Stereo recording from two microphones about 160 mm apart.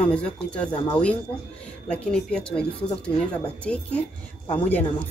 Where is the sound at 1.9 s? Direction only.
5° left (ahead or behind).